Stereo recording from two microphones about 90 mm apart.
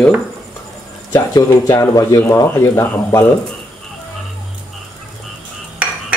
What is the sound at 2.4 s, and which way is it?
Speech, 30° left (ahead or behind).